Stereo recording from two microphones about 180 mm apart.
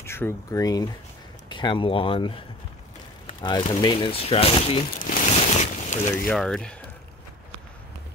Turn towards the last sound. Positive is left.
turn(degrees=5)  # may be behind; listen again after turning